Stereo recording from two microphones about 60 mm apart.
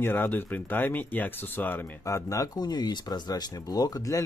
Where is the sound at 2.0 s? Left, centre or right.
Left.